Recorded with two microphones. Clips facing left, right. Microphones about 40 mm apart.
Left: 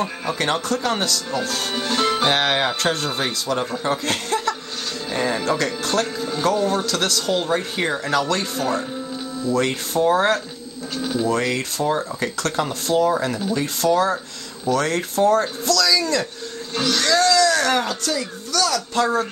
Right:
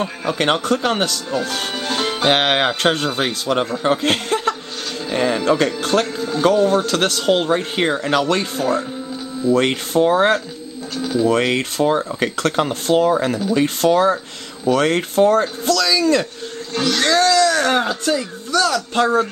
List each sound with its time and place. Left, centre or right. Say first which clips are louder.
0.4 s speech: right 5 dB; right
1.9 s music: left 2 dB; right
2.2 s music: right 3 dB; right
3.2 s speech: right 4 dB; right
13.1 s speech: right 4 dB; right